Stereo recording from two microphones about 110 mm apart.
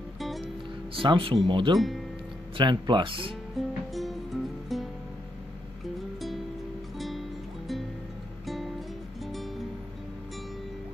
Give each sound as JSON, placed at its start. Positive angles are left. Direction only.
{"t": 0.9, "sound": "speech", "side_deg": -50}
{"t": 1.8, "sound": "speech", "side_deg": 0}
{"t": 2.5, "sound": "speech", "side_deg": -45}
{"t": 3.5, "sound": "music", "side_deg": 0}
{"t": 7.0, "sound": "music", "side_deg": 0}
{"t": 9.2, "sound": "music", "side_deg": 0}